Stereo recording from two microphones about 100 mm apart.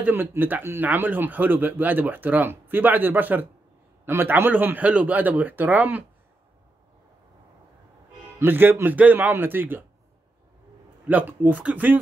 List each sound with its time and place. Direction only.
0.0 s a man's voice: 20° right (ahead or behind)
8.4 s speech: 20° right (ahead or behind)
11.1 s a man's voice: 15° right (ahead or behind)